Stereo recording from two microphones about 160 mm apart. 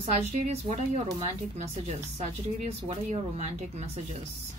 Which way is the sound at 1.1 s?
40° right (ahead or behind).